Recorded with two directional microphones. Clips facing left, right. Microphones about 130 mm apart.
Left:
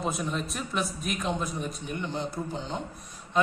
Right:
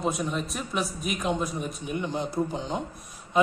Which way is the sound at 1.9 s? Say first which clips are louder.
Right 5 dB; 10° right (ahead or behind).